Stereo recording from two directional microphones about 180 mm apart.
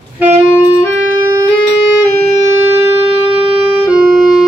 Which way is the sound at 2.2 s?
35° left (ahead or behind).